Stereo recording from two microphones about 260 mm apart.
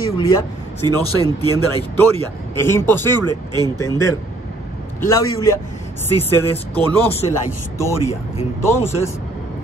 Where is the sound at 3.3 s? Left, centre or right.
Centre.